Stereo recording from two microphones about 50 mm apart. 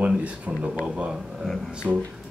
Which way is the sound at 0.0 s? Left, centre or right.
Right.